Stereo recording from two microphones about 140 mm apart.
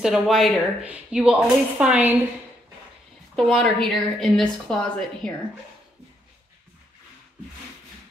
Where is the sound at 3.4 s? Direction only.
Centre (ahead or behind).